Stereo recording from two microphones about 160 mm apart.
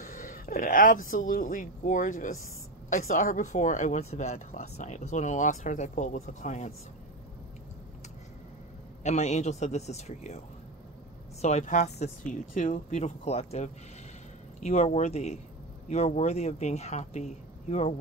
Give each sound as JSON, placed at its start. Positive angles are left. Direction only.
{"t": 0.0, "sound": "speech", "side_deg": 55}
{"t": 9.0, "sound": "speech", "side_deg": 45}
{"t": 11.4, "sound": "speech", "side_deg": 50}